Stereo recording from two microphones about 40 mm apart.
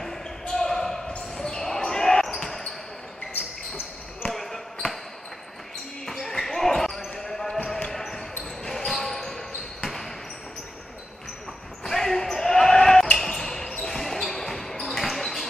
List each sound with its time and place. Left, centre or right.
0.0 s basketball bounce: centre
4.3 s basketball bounce: centre
6.0 s basketball bounce: centre
11.8 s basketball bounce: centre